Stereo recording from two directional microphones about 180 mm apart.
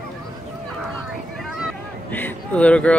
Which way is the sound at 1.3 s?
Centre (ahead or behind).